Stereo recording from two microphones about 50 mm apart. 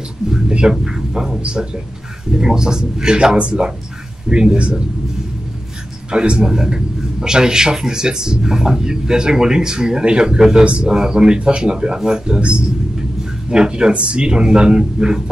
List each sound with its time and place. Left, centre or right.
0.3 s music: centre
1.4 s a man's voice: centre
6.0 s a man's voice: centre